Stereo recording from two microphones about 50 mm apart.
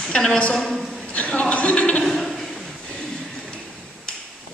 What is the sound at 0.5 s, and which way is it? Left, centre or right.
Speech, centre.